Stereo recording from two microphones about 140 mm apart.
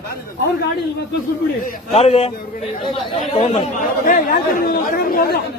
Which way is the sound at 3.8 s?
80° left.